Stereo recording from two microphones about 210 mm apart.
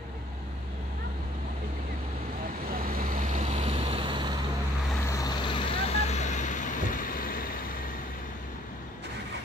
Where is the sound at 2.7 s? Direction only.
40° right (ahead or behind).